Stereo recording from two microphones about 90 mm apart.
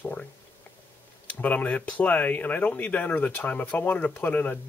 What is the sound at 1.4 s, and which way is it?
Speech, 15° left (ahead or behind).